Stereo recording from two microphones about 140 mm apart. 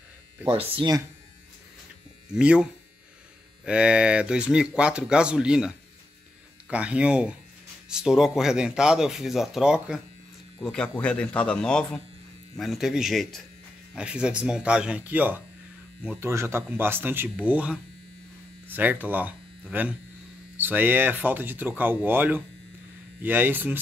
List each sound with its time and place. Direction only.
0.5 s speech: 40° right (ahead or behind)
2.3 s speech: 5° right (ahead or behind)
10.6 s a man's voice: 5° left (ahead or behind); by 23.8 s 15° right (ahead or behind)